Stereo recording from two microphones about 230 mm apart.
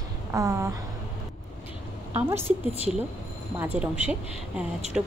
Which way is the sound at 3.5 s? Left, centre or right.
Centre.